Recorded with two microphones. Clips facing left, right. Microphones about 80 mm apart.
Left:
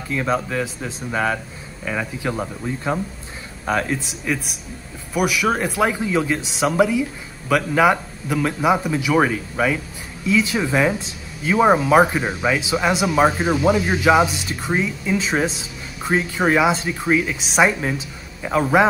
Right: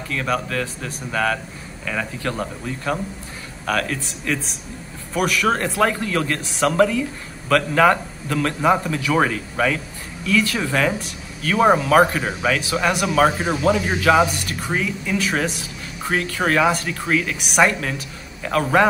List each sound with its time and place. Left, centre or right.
0.1 s a man's voice: centre